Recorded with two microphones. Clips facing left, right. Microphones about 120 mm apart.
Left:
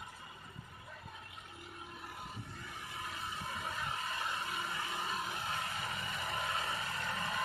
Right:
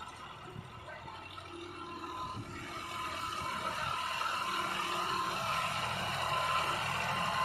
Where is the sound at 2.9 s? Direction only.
70° right (ahead or behind).